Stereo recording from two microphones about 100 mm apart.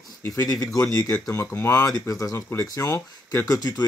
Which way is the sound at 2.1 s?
35° left (ahead or behind).